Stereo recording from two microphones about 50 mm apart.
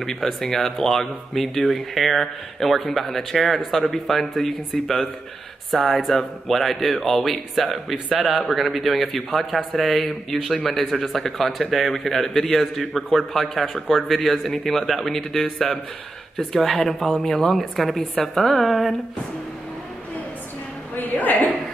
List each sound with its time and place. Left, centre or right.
0.0 s speech: centre
18.1 s speech: centre
20.9 s a woman's voice: left